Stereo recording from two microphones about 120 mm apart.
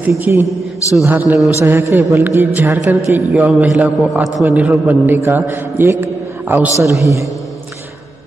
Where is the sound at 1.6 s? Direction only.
20° right (ahead or behind).